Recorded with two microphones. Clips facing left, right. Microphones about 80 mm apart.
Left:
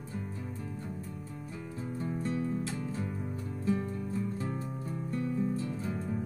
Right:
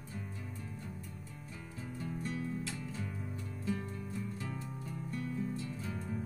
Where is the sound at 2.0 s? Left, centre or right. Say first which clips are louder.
Left 6 dB; left.